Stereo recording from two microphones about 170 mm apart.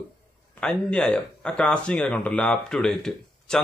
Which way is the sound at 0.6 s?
5° left (ahead or behind).